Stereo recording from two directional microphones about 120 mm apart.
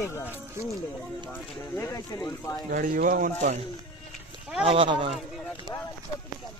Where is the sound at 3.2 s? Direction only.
90° right.